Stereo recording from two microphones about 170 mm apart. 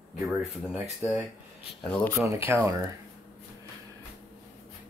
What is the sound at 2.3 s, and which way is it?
Speech, 15° right (ahead or behind).